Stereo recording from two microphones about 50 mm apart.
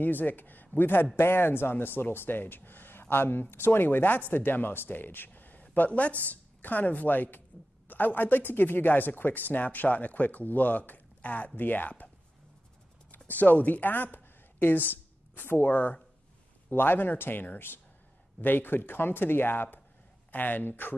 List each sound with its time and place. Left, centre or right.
0.0 s a woman's voice: left
13.3 s speech: left